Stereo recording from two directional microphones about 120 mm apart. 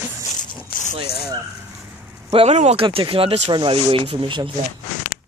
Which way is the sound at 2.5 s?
70° right (ahead or behind).